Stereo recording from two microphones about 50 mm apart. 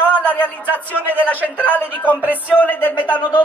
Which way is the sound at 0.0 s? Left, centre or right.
Left.